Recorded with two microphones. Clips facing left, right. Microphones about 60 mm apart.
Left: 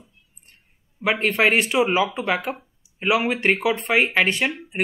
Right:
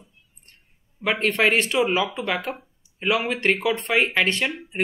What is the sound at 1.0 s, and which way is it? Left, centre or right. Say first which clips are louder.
A woman's voice: left 1 dB; centre.